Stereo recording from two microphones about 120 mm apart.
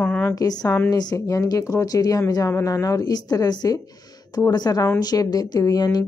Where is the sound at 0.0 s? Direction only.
15° left (ahead or behind).